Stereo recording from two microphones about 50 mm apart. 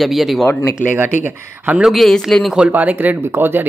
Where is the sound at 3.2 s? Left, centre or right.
Right.